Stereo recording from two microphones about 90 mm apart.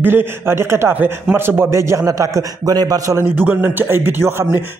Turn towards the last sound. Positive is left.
turn(degrees=-25)  # may be behind; listen again after turning